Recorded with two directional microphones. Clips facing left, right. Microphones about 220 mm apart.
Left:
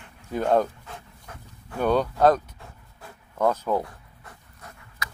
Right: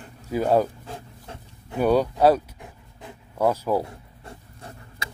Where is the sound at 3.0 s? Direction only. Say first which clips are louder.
Right 1 dB; 15° right (ahead or behind).